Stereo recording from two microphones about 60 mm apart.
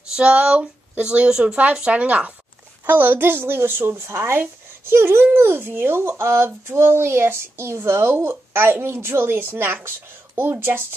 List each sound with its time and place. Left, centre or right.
0.1 s a woman's voice: centre
2.9 s a woman's voice: right